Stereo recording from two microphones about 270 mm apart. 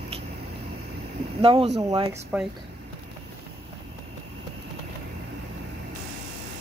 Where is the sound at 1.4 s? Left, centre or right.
Centre.